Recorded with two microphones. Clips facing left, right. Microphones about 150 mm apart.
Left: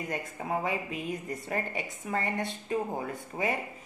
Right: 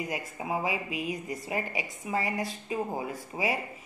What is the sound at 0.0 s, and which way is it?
A woman's voice, 5° right (ahead or behind).